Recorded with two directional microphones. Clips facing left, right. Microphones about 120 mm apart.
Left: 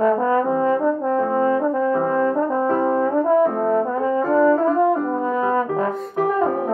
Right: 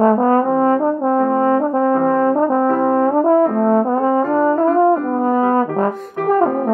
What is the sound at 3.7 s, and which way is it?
Brass instrument, 45° right (ahead or behind).